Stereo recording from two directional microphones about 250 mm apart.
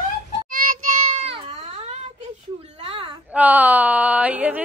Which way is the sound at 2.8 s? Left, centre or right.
Centre.